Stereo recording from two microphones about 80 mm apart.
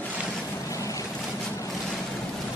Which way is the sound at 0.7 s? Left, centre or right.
Left.